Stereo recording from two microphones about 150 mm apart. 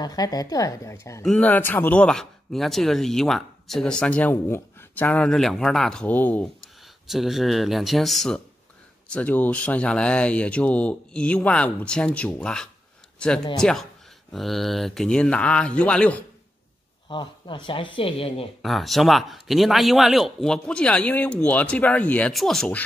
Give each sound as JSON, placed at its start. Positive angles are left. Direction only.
{"t": 0.0, "sound": "a woman's voice", "side_deg": 25}
{"t": 1.2, "sound": "speech", "side_deg": 5}
{"t": 17.1, "sound": "speech", "side_deg": 30}
{"t": 18.6, "sound": "speech", "side_deg": 0}